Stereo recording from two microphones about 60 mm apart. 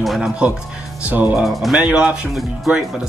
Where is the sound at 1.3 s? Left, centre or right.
Centre.